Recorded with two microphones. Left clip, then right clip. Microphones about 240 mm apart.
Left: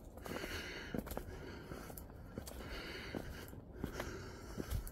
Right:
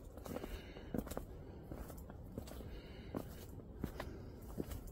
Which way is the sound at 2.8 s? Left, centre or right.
Left.